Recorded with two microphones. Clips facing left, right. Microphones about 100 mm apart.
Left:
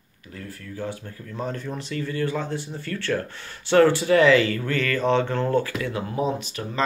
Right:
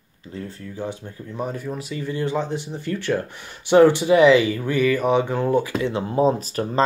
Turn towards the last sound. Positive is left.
turn(degrees=-40)  # may be behind; listen again after turning